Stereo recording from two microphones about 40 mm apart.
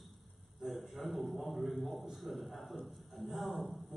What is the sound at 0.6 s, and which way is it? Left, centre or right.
A man's voice, centre.